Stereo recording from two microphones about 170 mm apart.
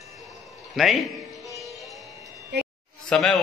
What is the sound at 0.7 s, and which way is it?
Speech, centre (ahead or behind).